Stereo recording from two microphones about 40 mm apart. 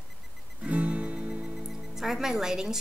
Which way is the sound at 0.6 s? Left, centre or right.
Right.